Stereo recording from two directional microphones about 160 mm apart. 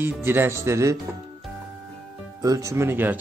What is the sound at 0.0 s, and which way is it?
Speech, 15° right (ahead or behind).